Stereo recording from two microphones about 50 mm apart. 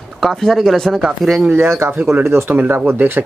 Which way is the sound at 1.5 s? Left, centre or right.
Right.